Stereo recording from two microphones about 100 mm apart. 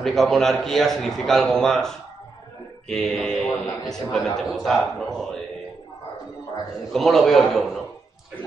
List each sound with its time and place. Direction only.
0.0 s a man's voice: centre (ahead or behind)
6.9 s a man's voice: centre (ahead or behind)